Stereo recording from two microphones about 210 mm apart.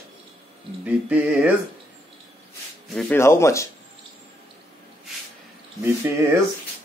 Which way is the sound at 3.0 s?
10° left (ahead or behind).